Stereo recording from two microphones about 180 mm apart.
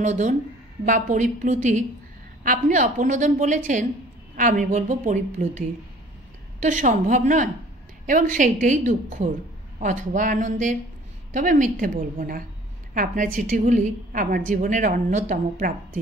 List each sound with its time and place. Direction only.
0.0 s a woman's voice: 40° right (ahead or behind)
6.6 s a woman's voice: 45° right (ahead or behind)